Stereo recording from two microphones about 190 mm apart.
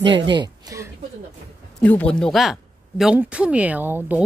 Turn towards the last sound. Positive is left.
turn(degrees=-10)  # may be behind; listen again after turning